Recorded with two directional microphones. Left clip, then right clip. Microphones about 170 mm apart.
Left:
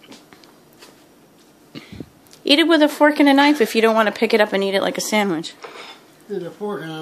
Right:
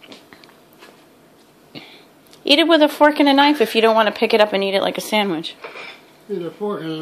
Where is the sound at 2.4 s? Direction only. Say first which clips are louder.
Right 1 dB; 25° left (ahead or behind).